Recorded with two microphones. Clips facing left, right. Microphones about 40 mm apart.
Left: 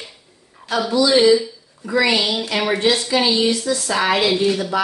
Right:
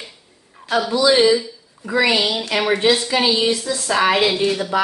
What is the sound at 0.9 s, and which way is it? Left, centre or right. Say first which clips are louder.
Speech: even; right.